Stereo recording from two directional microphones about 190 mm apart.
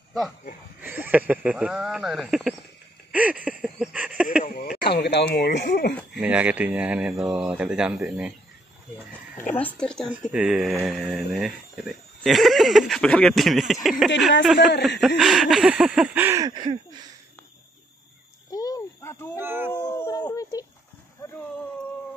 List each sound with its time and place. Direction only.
0.7 s speech: 10° right (ahead or behind)
3.1 s a sound: 5° right (ahead or behind)
4.5 s speech: 55° left (ahead or behind)
6.1 s speech: 5° right (ahead or behind)
9.8 s speech: 5° left (ahead or behind); by 17.0 s 25° right (ahead or behind)
18.5 s a sound: 20° left (ahead or behind)
19.3 s speech: 10° right (ahead or behind)
19.7 s speech: 10° left (ahead or behind)